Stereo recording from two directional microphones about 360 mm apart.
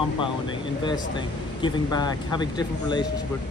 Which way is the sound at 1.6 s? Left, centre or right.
Centre.